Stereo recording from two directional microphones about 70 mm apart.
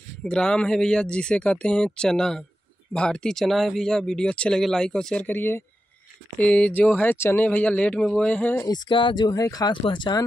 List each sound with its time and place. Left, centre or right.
0.2 s speech: centre
5.2 s speech: left
8.0 s speech: centre
8.3 s speech: left
8.6 s speech: left
9.3 s speech: left